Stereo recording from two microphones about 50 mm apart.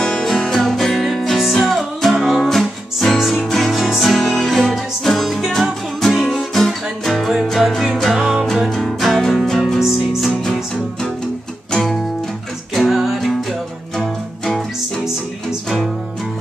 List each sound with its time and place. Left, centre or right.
0.0 s music: centre
8.6 s music: centre
11.7 s music: centre
12.7 s music: centre